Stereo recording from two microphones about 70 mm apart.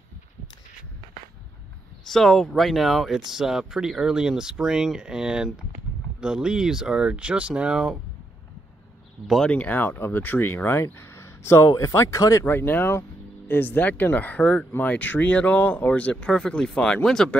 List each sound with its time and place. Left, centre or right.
2.0 s speech: centre
9.5 s speech: left
12.4 s speech: left; by 17.4 s centre